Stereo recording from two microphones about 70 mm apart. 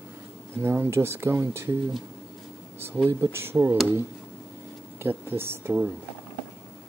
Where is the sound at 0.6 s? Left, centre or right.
Right.